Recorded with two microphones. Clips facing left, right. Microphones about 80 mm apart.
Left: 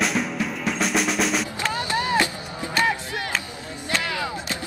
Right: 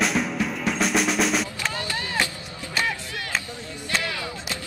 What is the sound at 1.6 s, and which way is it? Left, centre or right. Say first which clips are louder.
Skateboard: left 5 dB; left.